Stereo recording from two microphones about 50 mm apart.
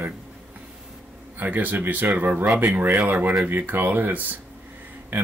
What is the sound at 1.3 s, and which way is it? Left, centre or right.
Speech, right.